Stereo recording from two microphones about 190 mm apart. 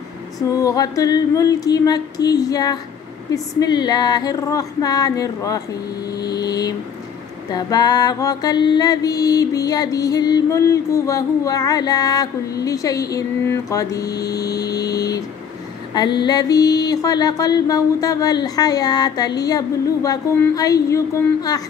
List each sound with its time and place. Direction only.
0.4 s mantra: 20° left (ahead or behind)